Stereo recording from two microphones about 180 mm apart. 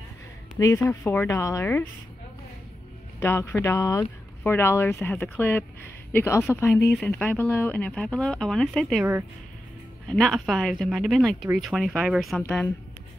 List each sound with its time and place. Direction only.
0.6 s speech: 15° left (ahead or behind)
3.2 s speech: 15° left (ahead or behind)
10.0 s speech: centre (ahead or behind)
12.4 s speech: 10° left (ahead or behind)